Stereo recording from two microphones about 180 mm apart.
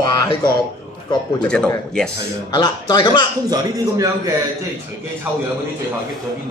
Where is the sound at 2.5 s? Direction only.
25° left (ahead or behind).